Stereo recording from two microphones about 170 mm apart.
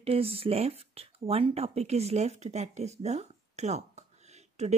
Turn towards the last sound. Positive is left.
turn(degrees=-40)  # may be behind; listen again after turning